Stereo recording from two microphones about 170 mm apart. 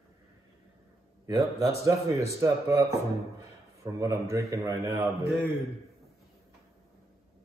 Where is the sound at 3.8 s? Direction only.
20° right (ahead or behind).